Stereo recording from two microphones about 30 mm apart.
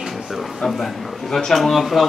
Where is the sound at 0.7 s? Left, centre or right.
Centre.